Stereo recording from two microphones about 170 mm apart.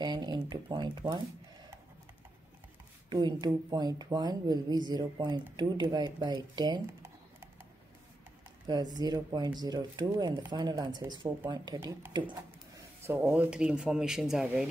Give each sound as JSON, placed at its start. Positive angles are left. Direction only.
{"t": 0.0, "sound": "speech", "side_deg": -25}
{"t": 3.1, "sound": "speech", "side_deg": -25}
{"t": 8.6, "sound": "speech", "side_deg": -25}